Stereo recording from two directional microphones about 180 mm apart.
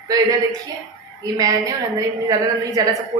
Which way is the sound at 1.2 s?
20° right (ahead or behind).